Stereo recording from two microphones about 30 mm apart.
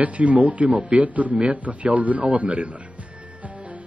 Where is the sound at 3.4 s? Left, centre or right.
Right.